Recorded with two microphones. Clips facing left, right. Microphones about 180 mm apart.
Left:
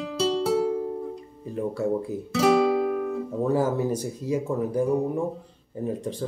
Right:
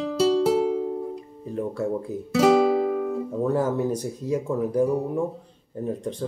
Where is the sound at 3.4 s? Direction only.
Centre (ahead or behind).